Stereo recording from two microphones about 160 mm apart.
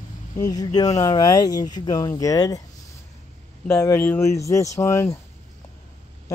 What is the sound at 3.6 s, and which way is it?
Speech, 15° left (ahead or behind).